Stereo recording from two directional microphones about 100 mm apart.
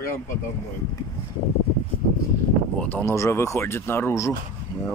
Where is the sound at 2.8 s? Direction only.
20° left (ahead or behind).